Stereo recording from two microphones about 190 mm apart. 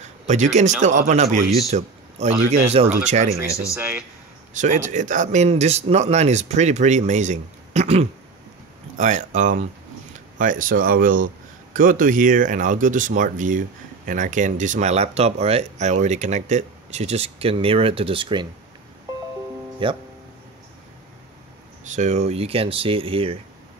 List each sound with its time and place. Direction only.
0.0 s a man's voice: 40° right (ahead or behind)
4.6 s speech: 40° right (ahead or behind); by 18.5 s 25° right (ahead or behind)
19.8 s speech: 25° right (ahead or behind)
21.8 s speech: 40° right (ahead or behind)